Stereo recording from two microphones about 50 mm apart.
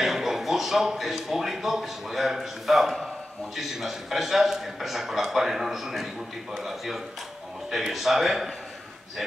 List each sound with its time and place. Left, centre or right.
0.0 s a man's voice: centre